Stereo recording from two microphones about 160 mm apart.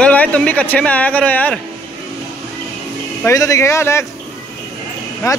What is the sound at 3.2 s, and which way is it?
Speech, 20° left (ahead or behind).